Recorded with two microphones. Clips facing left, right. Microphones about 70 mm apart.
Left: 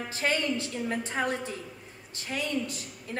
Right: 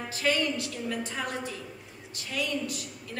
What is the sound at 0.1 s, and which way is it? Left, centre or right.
A woman's voice, left.